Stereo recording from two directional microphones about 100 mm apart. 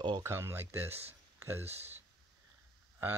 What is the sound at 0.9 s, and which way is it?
Speech, 90° right.